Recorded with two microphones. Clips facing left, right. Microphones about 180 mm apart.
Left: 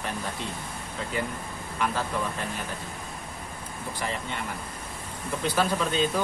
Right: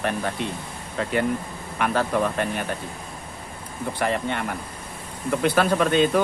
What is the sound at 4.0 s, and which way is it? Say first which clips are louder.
Speech: right 8 dB; 60° right (ahead or behind).